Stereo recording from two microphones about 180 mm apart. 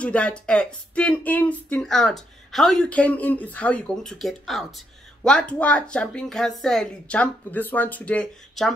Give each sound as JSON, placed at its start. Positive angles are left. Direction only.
{"t": 0.0, "sound": "speech", "side_deg": 5}